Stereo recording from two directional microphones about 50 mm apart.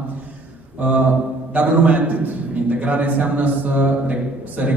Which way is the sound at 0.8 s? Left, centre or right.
Right.